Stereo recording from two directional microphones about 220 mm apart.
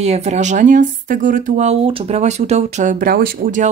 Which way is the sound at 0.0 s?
30° right (ahead or behind).